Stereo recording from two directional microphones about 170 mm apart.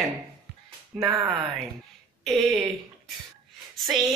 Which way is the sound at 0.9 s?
15° right (ahead or behind).